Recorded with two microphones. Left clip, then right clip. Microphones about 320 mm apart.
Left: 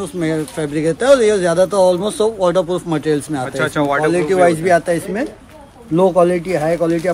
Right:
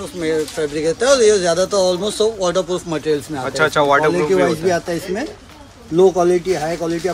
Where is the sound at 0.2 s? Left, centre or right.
Left.